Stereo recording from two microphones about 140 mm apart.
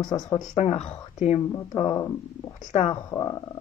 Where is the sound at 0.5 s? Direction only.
50° left (ahead or behind).